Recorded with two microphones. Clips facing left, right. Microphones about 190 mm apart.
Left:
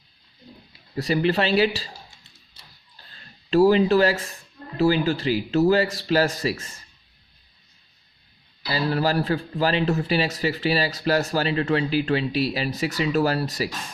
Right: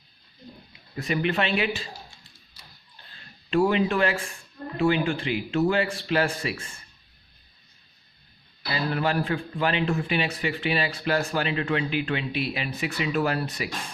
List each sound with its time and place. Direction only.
0.9 s a man's voice: 35° left (ahead or behind)
3.4 s a man's voice: 35° left (ahead or behind)
8.6 s a man's voice: 35° left (ahead or behind)